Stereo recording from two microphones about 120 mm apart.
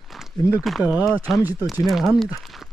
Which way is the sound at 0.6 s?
5° right (ahead or behind).